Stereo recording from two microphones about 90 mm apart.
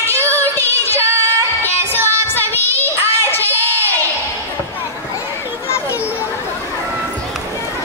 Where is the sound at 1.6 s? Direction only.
20° left (ahead or behind).